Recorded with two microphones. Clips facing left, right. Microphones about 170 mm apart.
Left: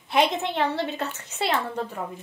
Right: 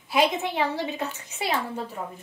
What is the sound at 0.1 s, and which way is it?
A woman's voice, 5° right (ahead or behind).